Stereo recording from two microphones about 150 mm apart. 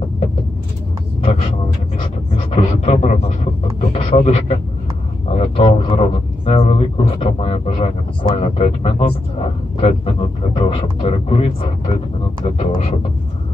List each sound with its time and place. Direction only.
2.5 s a man's voice: 45° left (ahead or behind)